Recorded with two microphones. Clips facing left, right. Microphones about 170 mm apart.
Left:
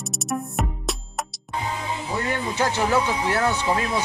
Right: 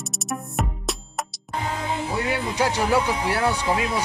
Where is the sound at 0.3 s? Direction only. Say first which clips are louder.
Left 1 dB; centre (ahead or behind).